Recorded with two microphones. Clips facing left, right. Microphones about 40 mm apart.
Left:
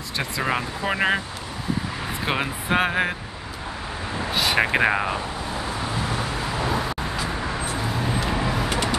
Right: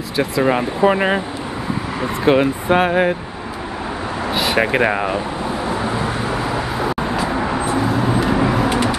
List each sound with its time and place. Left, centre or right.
0.2 s speech: centre
2.2 s speech: centre
4.3 s speech: centre
6.1 s vehicle: right
7.8 s vehicle: centre